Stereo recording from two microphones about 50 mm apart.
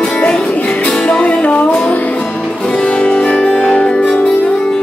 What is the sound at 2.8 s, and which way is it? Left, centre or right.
Music, left.